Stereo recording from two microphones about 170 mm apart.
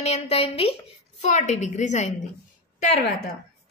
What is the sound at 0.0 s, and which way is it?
A woman's voice, 35° left (ahead or behind).